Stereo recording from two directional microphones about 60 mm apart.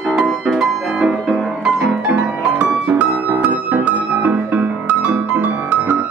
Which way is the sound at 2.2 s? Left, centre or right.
Right.